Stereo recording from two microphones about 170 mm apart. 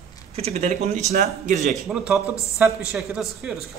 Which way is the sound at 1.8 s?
5° right (ahead or behind).